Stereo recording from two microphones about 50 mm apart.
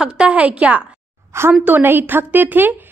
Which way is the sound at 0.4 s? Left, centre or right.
Right.